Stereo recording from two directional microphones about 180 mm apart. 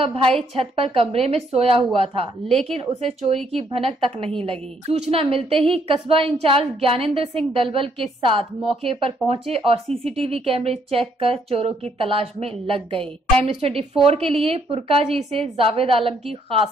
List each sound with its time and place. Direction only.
0.0 s a woman's voice: 30° right (ahead or behind)